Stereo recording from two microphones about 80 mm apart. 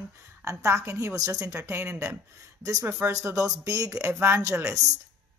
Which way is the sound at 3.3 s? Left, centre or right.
Right.